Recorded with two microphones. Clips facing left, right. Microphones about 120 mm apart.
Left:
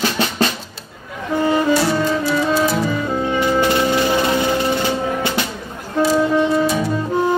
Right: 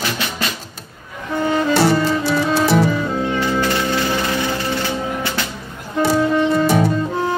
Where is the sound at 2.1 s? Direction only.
75° right (ahead or behind).